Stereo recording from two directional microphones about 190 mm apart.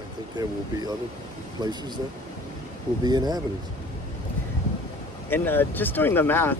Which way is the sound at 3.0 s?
20° right (ahead or behind).